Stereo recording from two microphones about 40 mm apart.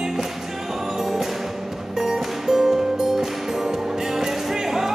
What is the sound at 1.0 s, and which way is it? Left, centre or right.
Music, centre.